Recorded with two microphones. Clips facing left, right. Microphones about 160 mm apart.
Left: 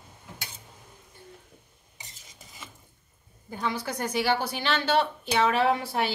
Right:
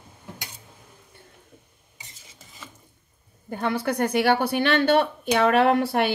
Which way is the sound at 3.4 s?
60° right (ahead or behind).